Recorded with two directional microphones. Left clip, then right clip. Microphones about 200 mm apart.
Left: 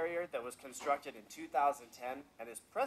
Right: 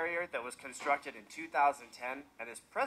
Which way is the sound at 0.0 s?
40° left (ahead or behind).